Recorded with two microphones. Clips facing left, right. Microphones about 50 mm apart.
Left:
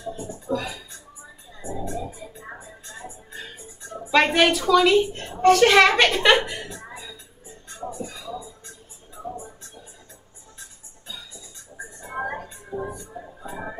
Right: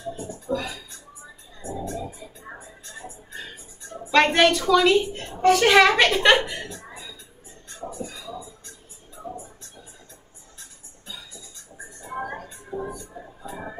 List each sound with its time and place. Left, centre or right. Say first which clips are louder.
0.5 s speech: left 1 dB; centre
3.9 s a woman's voice: even; centre
6.7 s a sound: left 2 dB; left
8.1 s music: left 2 dB; centre
12.1 s music: left 2 dB; left